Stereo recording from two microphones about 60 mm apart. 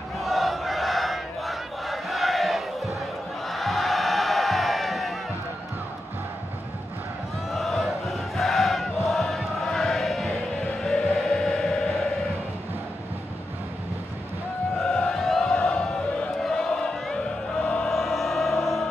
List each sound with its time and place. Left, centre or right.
0.2 s battle cry: centre
3.4 s crowd: centre
7.5 s chant: centre
10.8 s music: centre
14.8 s a sound: centre
17.8 s music: centre